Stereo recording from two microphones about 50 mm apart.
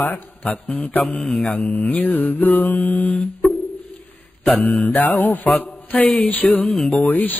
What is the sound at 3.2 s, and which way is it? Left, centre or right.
Music, centre.